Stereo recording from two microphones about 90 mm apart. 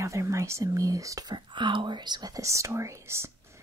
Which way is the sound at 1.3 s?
60° right (ahead or behind).